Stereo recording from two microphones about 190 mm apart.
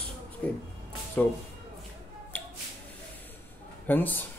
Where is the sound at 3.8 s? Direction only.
10° left (ahead or behind).